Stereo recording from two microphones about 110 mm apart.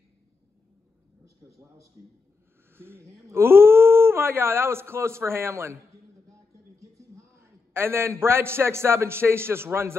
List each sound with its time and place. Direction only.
2.7 s a man's voice: 20° right (ahead or behind)
7.3 s a man's voice: 20° right (ahead or behind)